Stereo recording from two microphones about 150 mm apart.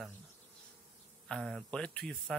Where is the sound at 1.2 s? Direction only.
Centre (ahead or behind).